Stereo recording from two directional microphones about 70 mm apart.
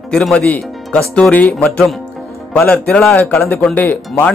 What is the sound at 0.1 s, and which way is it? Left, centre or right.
Speech, centre.